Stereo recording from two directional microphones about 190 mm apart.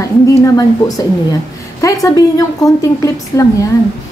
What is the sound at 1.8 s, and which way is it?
A woman's voice, 20° left (ahead or behind).